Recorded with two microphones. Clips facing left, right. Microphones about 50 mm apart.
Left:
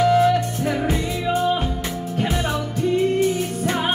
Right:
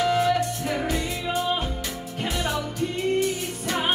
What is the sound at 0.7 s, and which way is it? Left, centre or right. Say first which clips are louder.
Music: left 4 dB; left.